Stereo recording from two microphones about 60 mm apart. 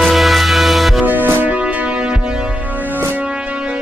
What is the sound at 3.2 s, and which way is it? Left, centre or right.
Music, centre.